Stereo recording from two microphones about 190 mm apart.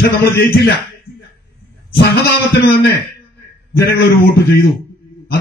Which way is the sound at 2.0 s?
60° left (ahead or behind).